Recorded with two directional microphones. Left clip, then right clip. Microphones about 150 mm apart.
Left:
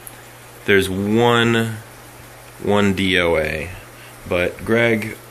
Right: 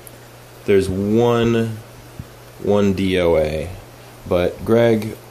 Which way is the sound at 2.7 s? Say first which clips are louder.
Even; 5° right (ahead or behind).